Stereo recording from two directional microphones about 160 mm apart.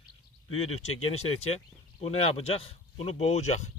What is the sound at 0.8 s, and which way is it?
Speech, 40° left (ahead or behind).